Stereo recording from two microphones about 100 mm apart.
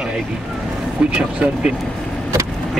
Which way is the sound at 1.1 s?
10° right (ahead or behind).